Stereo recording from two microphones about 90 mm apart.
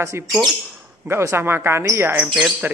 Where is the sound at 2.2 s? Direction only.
10° right (ahead or behind).